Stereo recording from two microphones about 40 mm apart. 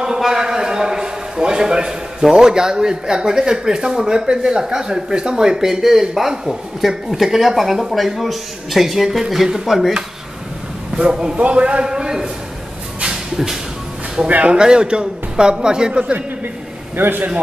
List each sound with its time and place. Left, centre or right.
0.2 s a sound: centre
2.2 s speech: centre
11.0 s a man's voice: right
11.8 s speech: centre
13.1 s a sound: centre
14.2 s speech: right
14.6 s a man's voice: right
16.9 s a man's voice: right